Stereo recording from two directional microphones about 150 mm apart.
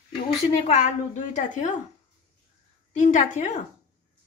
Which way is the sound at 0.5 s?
45° left (ahead or behind).